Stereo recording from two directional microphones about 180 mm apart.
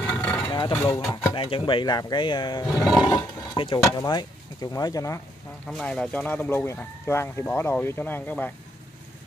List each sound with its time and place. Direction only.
0.0 s vehicle: 10° left (ahead or behind)
0.5 s a sound: 25° left (ahead or behind)
0.8 s speech: 20° left (ahead or behind)
5.7 s speech: centre (ahead or behind)